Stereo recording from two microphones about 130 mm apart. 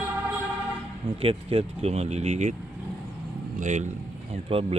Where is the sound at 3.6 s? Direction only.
70° right (ahead or behind).